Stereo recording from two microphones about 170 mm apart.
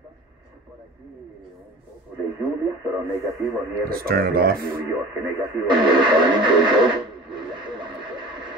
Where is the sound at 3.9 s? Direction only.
60° right (ahead or behind).